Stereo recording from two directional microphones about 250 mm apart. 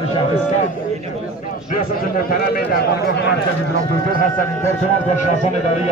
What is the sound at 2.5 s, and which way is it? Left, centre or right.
Speech, left.